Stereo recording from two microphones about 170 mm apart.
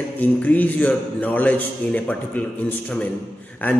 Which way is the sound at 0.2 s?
10° left (ahead or behind).